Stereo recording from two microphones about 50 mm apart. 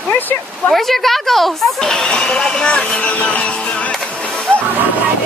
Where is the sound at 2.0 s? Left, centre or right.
Centre.